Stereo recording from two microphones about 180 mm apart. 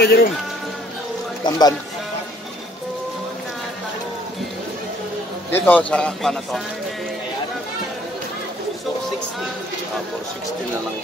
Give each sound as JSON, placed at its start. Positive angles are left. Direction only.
{"t": 0.0, "sound": "speech", "side_deg": 60}
{"t": 1.4, "sound": "speech", "side_deg": 20}
{"t": 5.5, "sound": "a man's voice", "side_deg": 10}